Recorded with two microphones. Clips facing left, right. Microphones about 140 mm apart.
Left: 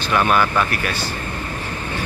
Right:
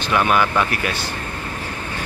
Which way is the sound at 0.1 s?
10° right (ahead or behind).